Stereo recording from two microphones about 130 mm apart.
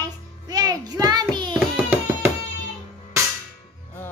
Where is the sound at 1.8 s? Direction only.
15° right (ahead or behind).